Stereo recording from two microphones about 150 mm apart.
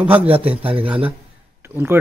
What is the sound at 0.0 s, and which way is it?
Speech, 10° right (ahead or behind).